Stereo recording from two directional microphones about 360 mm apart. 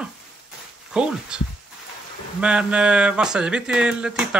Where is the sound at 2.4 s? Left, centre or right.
Centre.